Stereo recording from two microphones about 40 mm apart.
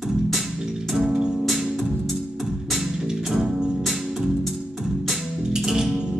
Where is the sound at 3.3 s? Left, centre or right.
Centre.